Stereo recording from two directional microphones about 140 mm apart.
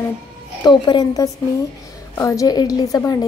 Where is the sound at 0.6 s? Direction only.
30° left (ahead or behind).